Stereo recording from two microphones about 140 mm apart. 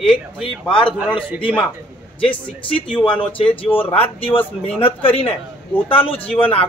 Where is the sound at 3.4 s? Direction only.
40° left (ahead or behind).